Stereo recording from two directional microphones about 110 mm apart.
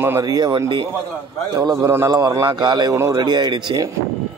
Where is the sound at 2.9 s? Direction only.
30° right (ahead or behind).